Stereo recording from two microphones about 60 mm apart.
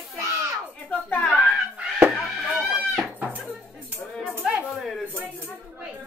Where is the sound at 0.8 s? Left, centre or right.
Left.